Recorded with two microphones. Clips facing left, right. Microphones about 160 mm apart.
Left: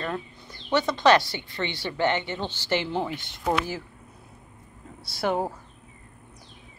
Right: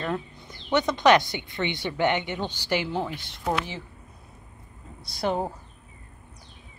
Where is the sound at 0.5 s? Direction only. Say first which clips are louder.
Even; 20° right (ahead or behind); by 3.8 s 5° left (ahead or behind).